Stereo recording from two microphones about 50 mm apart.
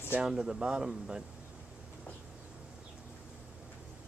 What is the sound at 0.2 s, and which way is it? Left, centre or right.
Speech, centre.